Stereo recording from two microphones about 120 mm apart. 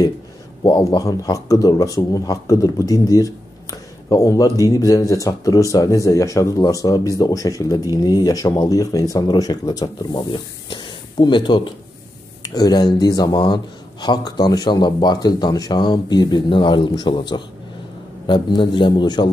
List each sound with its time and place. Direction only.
0.8 s speech: 30° left (ahead or behind)